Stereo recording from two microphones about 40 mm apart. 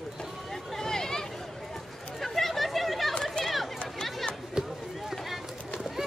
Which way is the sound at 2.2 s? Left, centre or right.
Centre.